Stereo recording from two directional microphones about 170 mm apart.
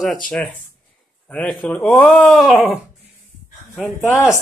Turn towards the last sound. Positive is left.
turn(degrees=20)  # may be behind; listen again after turning